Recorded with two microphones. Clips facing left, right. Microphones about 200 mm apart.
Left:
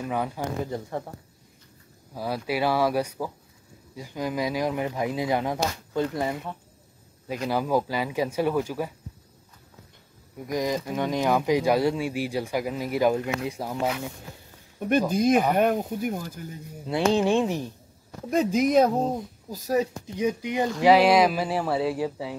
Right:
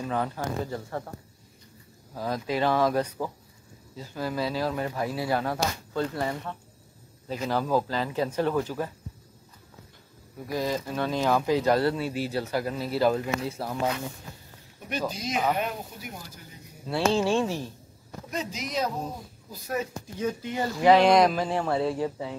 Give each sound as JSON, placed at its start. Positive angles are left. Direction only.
{"t": 0.0, "sound": "speech", "side_deg": 10}
{"t": 2.1, "sound": "speech", "side_deg": 10}
{"t": 10.5, "sound": "speech", "side_deg": 15}
{"t": 14.8, "sound": "speech", "side_deg": 55}
{"t": 16.8, "sound": "speech", "side_deg": 15}
{"t": 18.3, "sound": "speech", "side_deg": 55}
{"t": 19.5, "sound": "speech", "side_deg": 35}
{"t": 20.2, "sound": "speech", "side_deg": 15}